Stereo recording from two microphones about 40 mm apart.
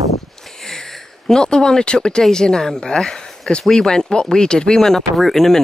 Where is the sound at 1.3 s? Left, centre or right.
Centre.